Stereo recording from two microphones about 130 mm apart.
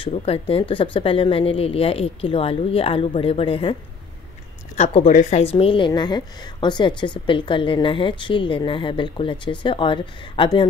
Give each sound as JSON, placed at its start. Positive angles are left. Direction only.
{"t": 0.0, "sound": "speech", "side_deg": 50}
{"t": 4.7, "sound": "speech", "side_deg": 50}
{"t": 5.0, "sound": "speech", "side_deg": 75}
{"t": 5.4, "sound": "a woman's voice", "side_deg": 50}